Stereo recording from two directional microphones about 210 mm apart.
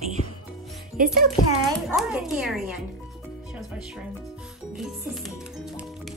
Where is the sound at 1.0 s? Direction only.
45° right (ahead or behind).